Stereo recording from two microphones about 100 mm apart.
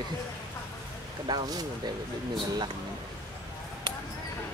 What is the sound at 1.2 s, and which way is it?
Speech, 40° right (ahead or behind).